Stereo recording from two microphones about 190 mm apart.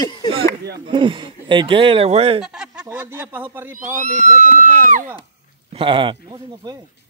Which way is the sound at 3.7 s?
40° right (ahead or behind).